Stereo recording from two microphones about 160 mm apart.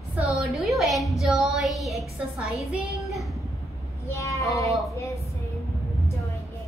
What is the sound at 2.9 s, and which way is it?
Child singing, centre (ahead or behind).